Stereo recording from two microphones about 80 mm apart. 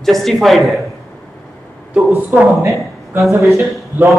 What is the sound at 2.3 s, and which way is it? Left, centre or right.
Speech, centre.